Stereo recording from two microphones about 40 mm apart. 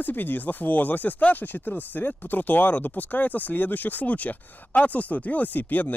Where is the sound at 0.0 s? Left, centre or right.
Left.